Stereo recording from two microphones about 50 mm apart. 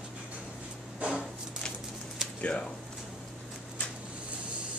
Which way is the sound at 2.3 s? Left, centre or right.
Left.